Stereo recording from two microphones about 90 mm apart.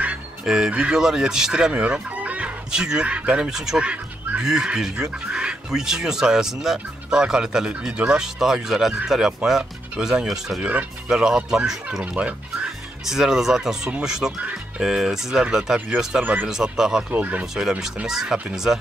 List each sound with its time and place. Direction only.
0.0 s speech: 10° right (ahead or behind)
17.1 s speech: 20° right (ahead or behind)
17.6 s speech: 5° right (ahead or behind)